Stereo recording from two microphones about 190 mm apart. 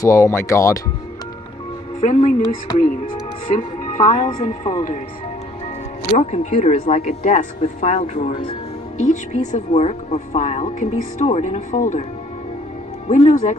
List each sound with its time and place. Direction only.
0.0 s speech: 15° left (ahead or behind)
2.0 s speech: 40° left (ahead or behind)
3.5 s speech: 45° left (ahead or behind)
6.1 s speech: 40° left (ahead or behind)
13.1 s speech: 35° left (ahead or behind)